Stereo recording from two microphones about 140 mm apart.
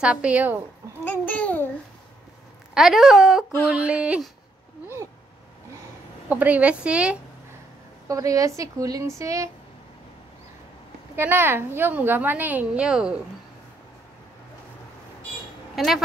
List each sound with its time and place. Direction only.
0.0 s a woman's voice: 10° right (ahead or behind)
1.0 s a child's voice: 10° left (ahead or behind)
2.7 s a woman's voice: centre (ahead or behind)
6.2 s a woman's voice: 10° right (ahead or behind)
8.1 s a woman's voice: 25° right (ahead or behind)
11.1 s a woman's voice: 15° right (ahead or behind)
15.7 s speech: centre (ahead or behind)